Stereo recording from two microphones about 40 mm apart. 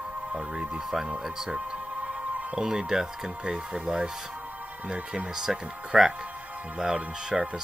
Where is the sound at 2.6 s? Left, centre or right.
Centre.